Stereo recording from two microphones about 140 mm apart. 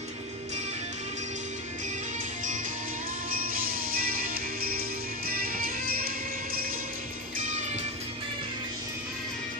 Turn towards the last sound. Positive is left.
turn(degrees=-55)  # may be behind; listen again after turning